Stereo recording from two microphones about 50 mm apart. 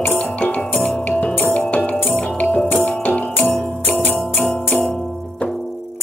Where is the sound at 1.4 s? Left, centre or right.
Left.